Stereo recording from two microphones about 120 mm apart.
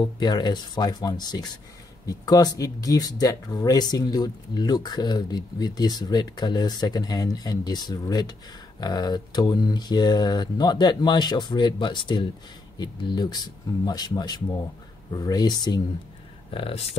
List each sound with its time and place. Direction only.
0.0 s speech: 35° left (ahead or behind)
16.4 s speech: 50° left (ahead or behind)